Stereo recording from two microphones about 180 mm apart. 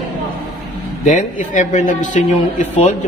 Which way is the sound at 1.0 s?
45° left (ahead or behind).